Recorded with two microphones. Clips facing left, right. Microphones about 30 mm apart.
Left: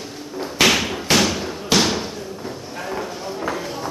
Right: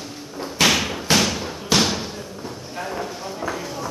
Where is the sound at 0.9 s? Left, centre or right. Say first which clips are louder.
Left 2 dB; centre.